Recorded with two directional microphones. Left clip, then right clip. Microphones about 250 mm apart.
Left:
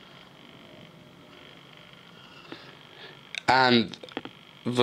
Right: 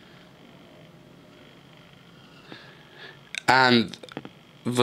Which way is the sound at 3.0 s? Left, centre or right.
Centre.